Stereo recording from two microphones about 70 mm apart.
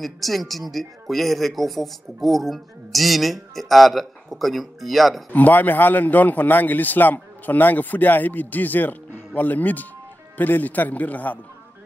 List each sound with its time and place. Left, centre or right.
0.0 s speech: centre
5.3 s a man's voice: left